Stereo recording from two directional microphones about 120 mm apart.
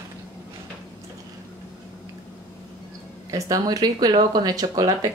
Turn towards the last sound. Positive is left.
turn(degrees=-30)  # may be behind; listen again after turning